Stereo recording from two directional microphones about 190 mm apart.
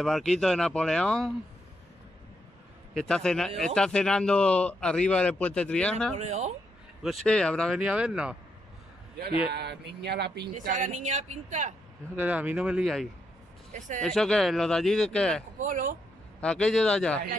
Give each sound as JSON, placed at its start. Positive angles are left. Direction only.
{"t": 0.0, "sound": "a man's voice", "side_deg": 0}
{"t": 3.0, "sound": "a man's voice", "side_deg": 5}
{"t": 6.1, "sound": "speech", "side_deg": -35}
{"t": 7.2, "sound": "a man's voice", "side_deg": 5}
{"t": 9.5, "sound": "speech", "side_deg": -60}
{"t": 10.6, "sound": "speech", "side_deg": -45}
{"t": 12.2, "sound": "a man's voice", "side_deg": -10}
{"t": 13.7, "sound": "speech", "side_deg": -40}
{"t": 14.0, "sound": "a man's voice", "side_deg": 5}
{"t": 15.6, "sound": "speech", "side_deg": -40}
{"t": 16.3, "sound": "a man's voice", "side_deg": 5}